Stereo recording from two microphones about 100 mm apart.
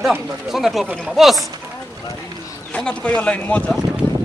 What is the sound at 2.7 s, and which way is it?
Speech, 10° left (ahead or behind).